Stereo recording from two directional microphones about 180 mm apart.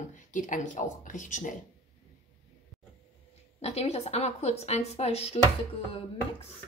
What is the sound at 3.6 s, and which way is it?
A woman's voice, 35° left (ahead or behind).